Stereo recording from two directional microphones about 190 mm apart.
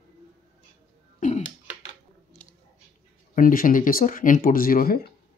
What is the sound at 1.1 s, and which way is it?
Cough, 40° left (ahead or behind).